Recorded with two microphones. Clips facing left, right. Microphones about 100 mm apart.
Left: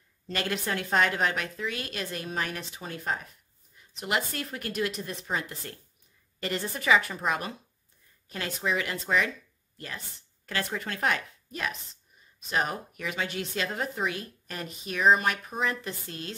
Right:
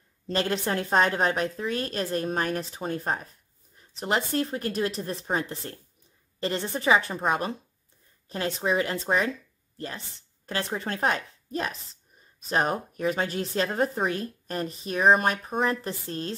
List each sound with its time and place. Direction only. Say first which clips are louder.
0.3 s a woman's voice: right 4 dB; 30° right (ahead or behind)